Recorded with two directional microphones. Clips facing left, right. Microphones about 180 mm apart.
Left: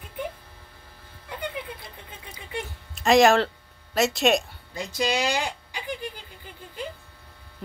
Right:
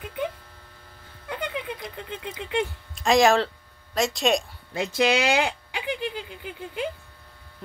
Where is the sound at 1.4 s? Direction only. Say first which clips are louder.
Right 2 dB; 85° right.